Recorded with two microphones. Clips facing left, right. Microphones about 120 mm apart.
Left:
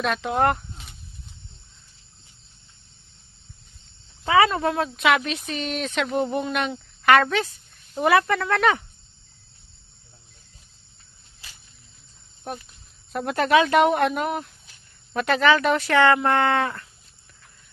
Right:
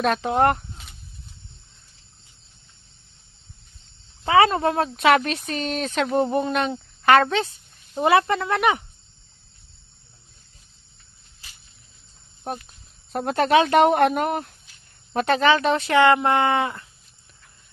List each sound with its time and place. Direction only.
0.0 s speech: 35° right (ahead or behind)
0.8 s a sound: centre (ahead or behind)
4.2 s speech: 30° right (ahead or behind)
12.5 s speech: 35° right (ahead or behind)
15.1 s speech: 30° right (ahead or behind)